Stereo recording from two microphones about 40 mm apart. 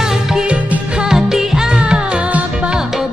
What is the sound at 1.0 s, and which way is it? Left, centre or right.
Music, centre.